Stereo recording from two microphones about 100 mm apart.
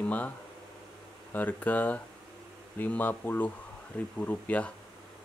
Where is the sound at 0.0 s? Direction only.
15° left (ahead or behind).